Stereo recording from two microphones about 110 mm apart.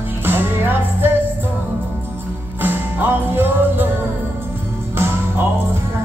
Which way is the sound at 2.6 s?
15° right (ahead or behind).